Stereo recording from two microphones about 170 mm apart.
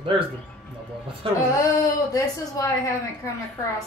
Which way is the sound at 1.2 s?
30° right (ahead or behind).